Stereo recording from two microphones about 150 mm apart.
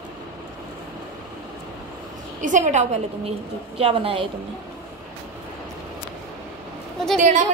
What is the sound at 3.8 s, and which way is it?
Speech, 40° right (ahead or behind).